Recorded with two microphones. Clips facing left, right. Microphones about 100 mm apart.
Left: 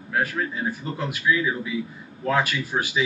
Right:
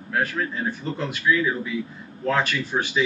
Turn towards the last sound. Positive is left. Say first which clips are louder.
# right 1 dB
turn(degrees=5)  # may be behind; listen again after turning